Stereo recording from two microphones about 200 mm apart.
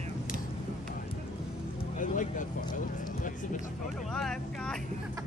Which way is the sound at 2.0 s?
40° left (ahead or behind).